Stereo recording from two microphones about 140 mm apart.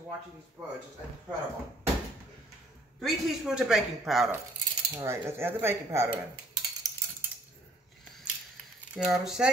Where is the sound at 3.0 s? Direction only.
Centre (ahead or behind).